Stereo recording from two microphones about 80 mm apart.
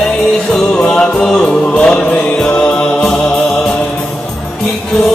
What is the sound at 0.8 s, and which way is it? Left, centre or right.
Music, centre.